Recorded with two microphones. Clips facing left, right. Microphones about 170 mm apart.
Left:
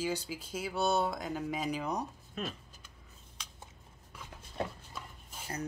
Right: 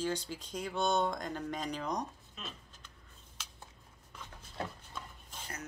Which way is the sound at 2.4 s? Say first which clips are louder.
Left 9 dB; 55° left (ahead or behind).